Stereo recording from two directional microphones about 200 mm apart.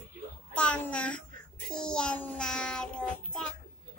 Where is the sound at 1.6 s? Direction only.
5° left (ahead or behind).